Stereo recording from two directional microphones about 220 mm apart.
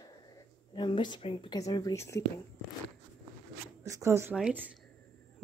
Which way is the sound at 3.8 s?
15° right (ahead or behind).